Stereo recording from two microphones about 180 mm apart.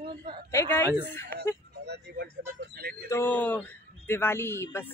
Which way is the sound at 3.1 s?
10° left (ahead or behind).